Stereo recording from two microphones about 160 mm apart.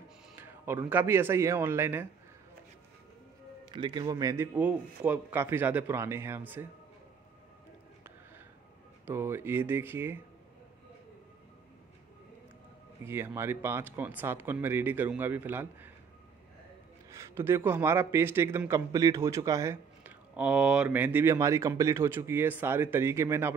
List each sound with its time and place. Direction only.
0.4 s a man's voice: 15° right (ahead or behind)
3.7 s speech: 30° right (ahead or behind)
4.6 s a man's voice: 10° right (ahead or behind)
9.0 s a man's voice: 15° right (ahead or behind)
13.0 s a man's voice: 15° right (ahead or behind)
17.1 s a man's voice: 15° right (ahead or behind)